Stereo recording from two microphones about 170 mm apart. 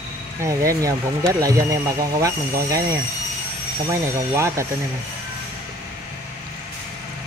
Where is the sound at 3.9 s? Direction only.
15° right (ahead or behind).